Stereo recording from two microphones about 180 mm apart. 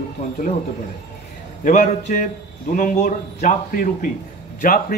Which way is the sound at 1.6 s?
45° left (ahead or behind).